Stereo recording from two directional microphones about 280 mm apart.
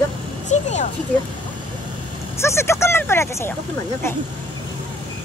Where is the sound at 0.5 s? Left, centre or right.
Left.